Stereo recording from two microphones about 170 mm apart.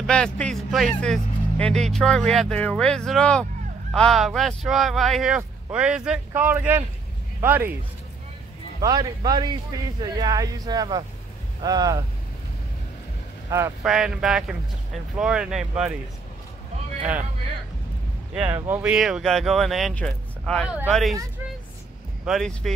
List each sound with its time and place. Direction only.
0.0 s speech: 5° left (ahead or behind); by 6.8 s 10° right (ahead or behind)
8.8 s a man's voice: 20° right (ahead or behind)
13.5 s speech: 15° right (ahead or behind)
13.8 s speech: 5° right (ahead or behind)
17.0 s speech: 10° right (ahead or behind)
18.3 s speech: 10° right (ahead or behind)
22.2 s speech: centre (ahead or behind)